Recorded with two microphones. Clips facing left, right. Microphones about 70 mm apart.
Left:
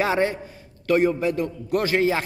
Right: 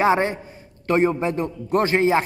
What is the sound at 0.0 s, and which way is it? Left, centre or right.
A man's voice, right.